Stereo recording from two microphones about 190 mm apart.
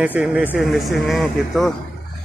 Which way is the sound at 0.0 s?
5° right (ahead or behind).